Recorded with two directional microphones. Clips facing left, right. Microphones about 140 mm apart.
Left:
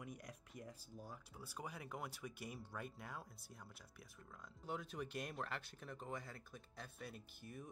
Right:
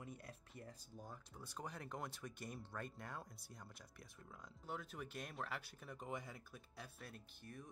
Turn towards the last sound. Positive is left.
turn(degrees=5)  # may be behind; listen again after turning